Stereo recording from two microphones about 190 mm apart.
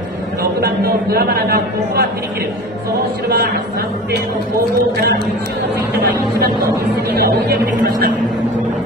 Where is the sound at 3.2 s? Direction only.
55° right (ahead or behind).